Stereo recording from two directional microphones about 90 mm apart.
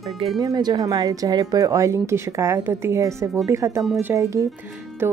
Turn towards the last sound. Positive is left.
turn(degrees=-25)  # may be behind; listen again after turning